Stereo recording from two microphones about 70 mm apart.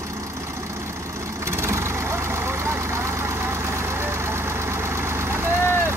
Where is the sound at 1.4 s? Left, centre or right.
Right.